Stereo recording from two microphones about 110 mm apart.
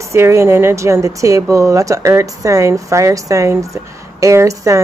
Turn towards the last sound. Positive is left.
turn(degrees=-30)  # may be behind; listen again after turning